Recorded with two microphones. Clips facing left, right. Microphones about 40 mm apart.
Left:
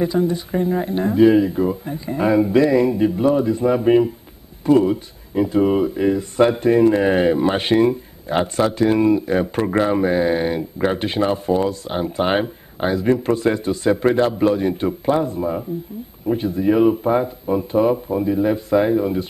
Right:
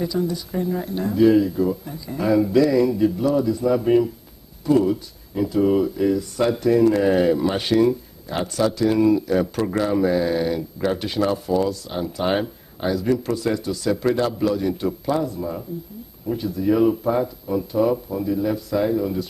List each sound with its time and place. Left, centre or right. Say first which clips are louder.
0.0 s speech: left 5 dB; left